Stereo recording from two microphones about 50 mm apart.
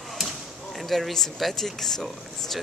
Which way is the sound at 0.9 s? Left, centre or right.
Centre.